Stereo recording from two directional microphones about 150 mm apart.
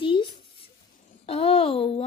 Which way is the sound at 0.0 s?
35° left (ahead or behind).